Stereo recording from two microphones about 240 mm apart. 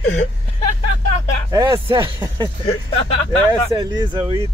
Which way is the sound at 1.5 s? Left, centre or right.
Centre.